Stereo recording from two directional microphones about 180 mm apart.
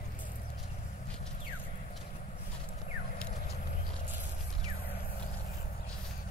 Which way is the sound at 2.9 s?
45° left (ahead or behind).